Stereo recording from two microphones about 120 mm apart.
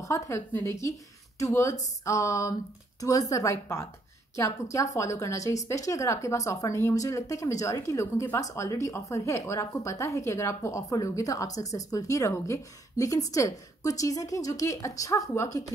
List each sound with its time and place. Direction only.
0.0 s a woman's voice: 25° left (ahead or behind)